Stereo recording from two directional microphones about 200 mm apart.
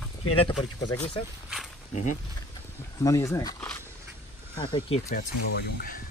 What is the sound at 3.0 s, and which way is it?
A man's voice, 15° left (ahead or behind).